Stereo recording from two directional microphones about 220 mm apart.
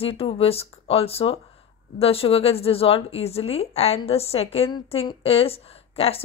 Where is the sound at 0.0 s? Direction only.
25° left (ahead or behind).